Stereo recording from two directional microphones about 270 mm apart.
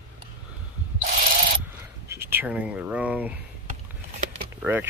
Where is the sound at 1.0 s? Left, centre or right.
Right.